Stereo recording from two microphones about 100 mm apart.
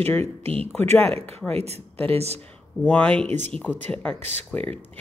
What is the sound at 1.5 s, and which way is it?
Speech, 90° right.